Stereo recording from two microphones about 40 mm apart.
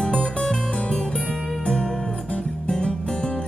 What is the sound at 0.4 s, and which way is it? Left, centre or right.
Music, left.